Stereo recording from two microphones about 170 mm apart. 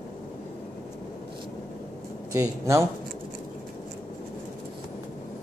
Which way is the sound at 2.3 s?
15° right (ahead or behind).